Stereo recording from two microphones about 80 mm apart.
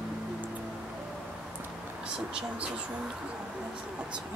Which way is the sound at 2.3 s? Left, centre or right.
Centre.